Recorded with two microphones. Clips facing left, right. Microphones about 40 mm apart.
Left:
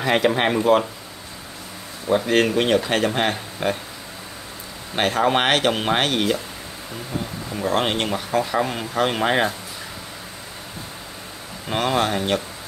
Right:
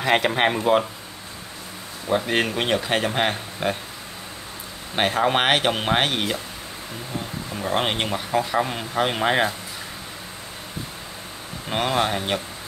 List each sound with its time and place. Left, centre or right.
0.0 s speech: right
0.7 s speech: centre
2.1 s speech: centre
4.9 s speech: centre
7.5 s speech: centre
11.7 s speech: centre